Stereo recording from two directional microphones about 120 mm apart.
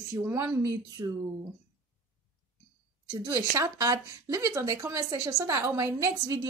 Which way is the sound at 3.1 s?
30° right (ahead or behind).